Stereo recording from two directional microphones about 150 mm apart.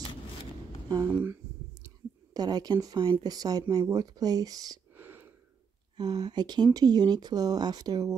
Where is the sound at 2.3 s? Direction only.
25° right (ahead or behind).